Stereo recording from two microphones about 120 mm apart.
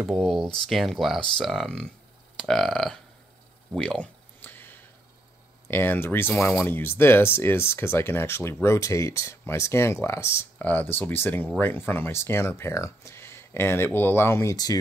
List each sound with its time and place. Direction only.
0.0 s speech: centre (ahead or behind)
3.7 s a sound: 5° left (ahead or behind)
5.7 s speech: 15° left (ahead or behind)